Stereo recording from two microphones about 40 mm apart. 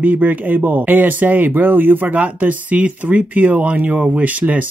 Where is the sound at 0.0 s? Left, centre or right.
Right.